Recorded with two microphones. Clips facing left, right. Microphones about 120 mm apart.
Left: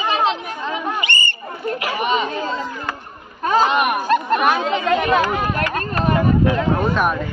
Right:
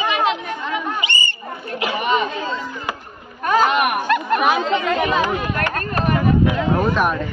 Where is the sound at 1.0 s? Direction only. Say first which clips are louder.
Left 1 dB; 55° left (ahead or behind).